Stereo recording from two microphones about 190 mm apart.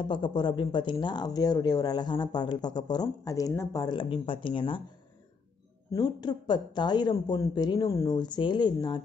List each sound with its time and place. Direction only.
0.1 s speech: 25° left (ahead or behind)
5.9 s speech: 20° left (ahead or behind)